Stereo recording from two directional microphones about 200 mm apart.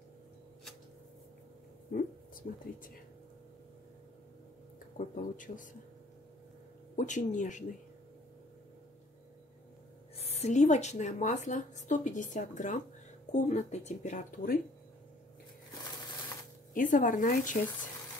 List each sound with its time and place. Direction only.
2.0 s speech: 45° left (ahead or behind)
4.9 s a woman's voice: 40° left (ahead or behind)
7.0 s a woman's voice: 40° left (ahead or behind)
10.1 s a woman's voice: 30° left (ahead or behind)
16.7 s a woman's voice: 40° left (ahead or behind)